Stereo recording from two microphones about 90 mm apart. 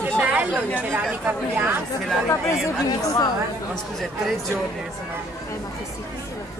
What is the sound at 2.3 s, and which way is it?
Speech, 35° left (ahead or behind).